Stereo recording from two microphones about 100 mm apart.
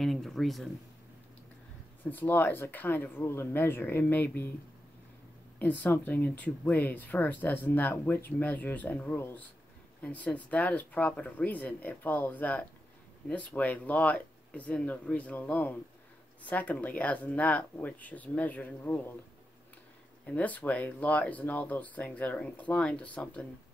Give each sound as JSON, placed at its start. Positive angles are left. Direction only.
{"t": 0.0, "sound": "speech", "side_deg": 0}
{"t": 2.0, "sound": "speech", "side_deg": 20}
{"t": 5.6, "sound": "speech", "side_deg": 15}
{"t": 20.2, "sound": "speech", "side_deg": 15}